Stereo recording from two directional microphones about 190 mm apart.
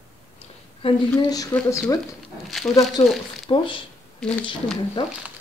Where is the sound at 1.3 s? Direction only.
20° left (ahead or behind).